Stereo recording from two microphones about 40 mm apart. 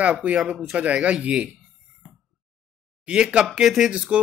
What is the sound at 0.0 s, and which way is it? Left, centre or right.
Speech, right.